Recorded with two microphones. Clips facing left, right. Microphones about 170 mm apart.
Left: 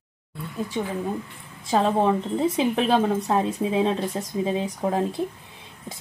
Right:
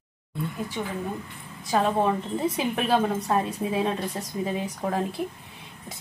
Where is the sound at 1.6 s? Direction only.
25° left (ahead or behind).